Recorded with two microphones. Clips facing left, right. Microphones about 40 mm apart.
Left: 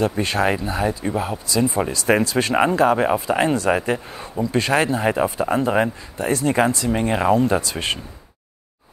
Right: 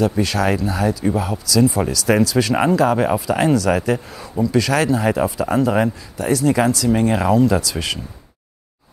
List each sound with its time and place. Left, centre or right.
0.2 s speech: left